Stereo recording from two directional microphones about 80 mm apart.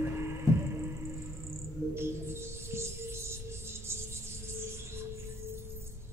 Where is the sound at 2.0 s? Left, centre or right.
Right.